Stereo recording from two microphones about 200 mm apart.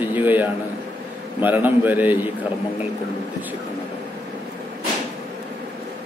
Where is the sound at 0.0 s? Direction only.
10° right (ahead or behind).